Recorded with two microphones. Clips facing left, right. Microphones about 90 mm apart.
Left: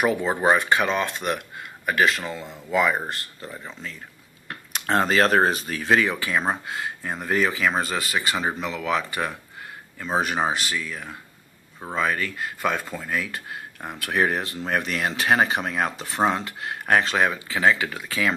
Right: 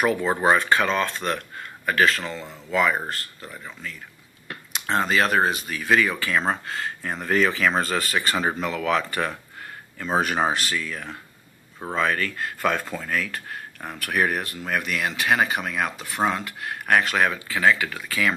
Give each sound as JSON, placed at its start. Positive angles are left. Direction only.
{"t": 0.0, "sound": "speech", "side_deg": 15}
{"t": 4.7, "sound": "speech", "side_deg": 40}